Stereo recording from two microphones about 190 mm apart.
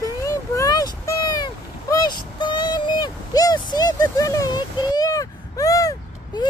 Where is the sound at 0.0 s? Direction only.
15° left (ahead or behind).